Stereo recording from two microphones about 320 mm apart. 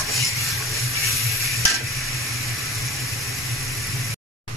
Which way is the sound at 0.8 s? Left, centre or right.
Centre.